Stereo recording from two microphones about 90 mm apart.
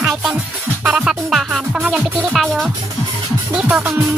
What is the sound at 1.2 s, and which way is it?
Music, centre (ahead or behind).